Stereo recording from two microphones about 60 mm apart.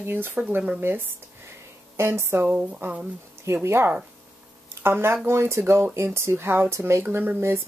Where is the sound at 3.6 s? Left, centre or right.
Right.